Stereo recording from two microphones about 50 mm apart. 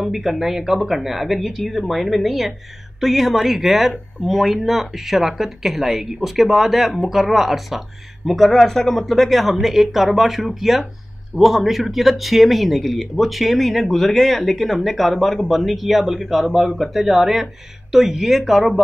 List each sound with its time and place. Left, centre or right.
0.0 s speech: centre